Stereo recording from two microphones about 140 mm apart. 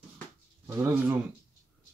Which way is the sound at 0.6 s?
20° right (ahead or behind).